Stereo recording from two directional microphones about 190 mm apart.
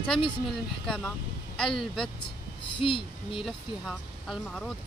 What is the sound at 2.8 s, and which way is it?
Speech, 25° left (ahead or behind).